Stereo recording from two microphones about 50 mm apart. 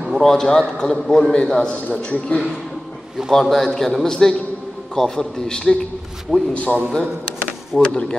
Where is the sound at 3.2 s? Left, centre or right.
Centre.